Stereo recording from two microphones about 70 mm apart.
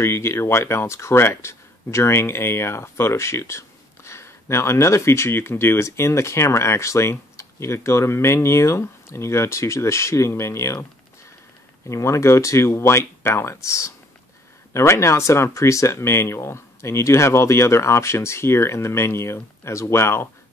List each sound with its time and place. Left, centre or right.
0.0 s speech: left
11.9 s speech: left